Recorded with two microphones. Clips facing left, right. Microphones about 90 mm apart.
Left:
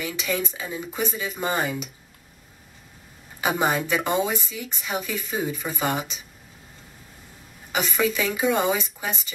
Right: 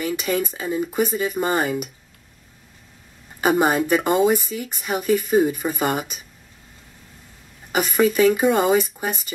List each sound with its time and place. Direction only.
0.0 s speech: 50° right (ahead or behind)
0.7 s speech: 5° right (ahead or behind)
1.1 s speech: 50° right (ahead or behind)
3.3 s speech: 50° right (ahead or behind)
7.9 s speech: 50° right (ahead or behind)